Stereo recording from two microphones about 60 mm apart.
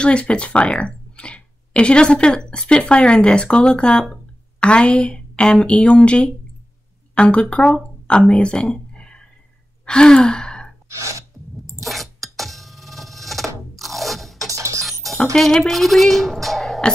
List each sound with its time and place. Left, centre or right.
0.0 s speech: centre
9.8 s sigh: centre
11.8 s a sound: centre
13.7 s crunch: centre
14.5 s music: right
14.9 s cutlery: centre
15.3 s a woman's voice: centre